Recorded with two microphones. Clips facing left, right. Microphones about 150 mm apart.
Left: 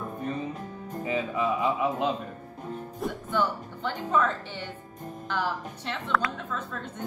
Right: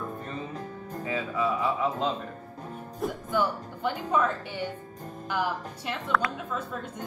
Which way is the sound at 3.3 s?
10° right (ahead or behind).